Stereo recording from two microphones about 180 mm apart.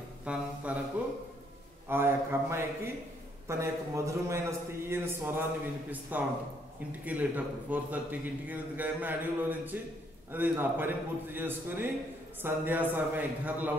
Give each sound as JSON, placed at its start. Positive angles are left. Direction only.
{"t": 0.2, "sound": "a man's voice", "side_deg": -5}
{"t": 1.9, "sound": "a man's voice", "side_deg": -10}